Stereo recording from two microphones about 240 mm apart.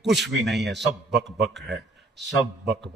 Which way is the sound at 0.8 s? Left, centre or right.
Right.